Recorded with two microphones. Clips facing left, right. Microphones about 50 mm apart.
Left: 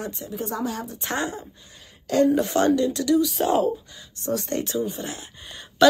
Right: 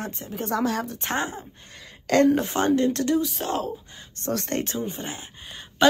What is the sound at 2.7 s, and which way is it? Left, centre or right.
Speech, right.